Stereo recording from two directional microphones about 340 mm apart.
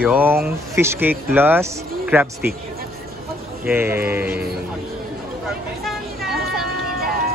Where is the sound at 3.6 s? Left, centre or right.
Centre.